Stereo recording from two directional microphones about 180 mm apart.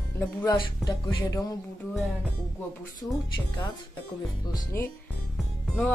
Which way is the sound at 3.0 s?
5° left (ahead or behind).